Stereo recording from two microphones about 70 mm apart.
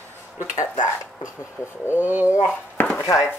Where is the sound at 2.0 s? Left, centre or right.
Right.